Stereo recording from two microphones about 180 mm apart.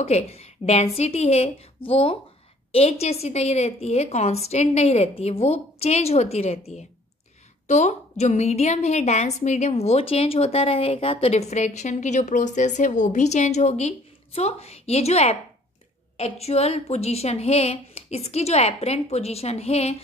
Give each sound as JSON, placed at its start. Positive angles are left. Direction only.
{"t": 0.0, "sound": "a woman's voice", "side_deg": 35}